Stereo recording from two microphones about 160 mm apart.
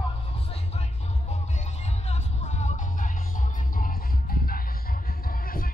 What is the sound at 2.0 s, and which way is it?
Music, 45° left (ahead or behind).